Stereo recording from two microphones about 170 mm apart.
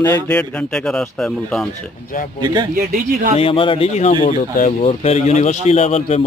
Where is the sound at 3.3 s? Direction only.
35° left (ahead or behind).